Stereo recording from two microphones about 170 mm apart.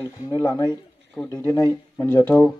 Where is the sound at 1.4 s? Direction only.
25° left (ahead or behind).